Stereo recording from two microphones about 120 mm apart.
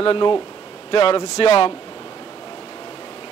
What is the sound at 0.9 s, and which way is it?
Speech, 55° left (ahead or behind).